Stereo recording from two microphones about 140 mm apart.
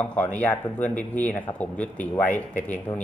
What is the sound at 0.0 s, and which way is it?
A man's voice, 10° left (ahead or behind).